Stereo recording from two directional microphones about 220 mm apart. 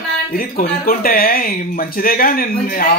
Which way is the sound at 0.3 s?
40° left (ahead or behind).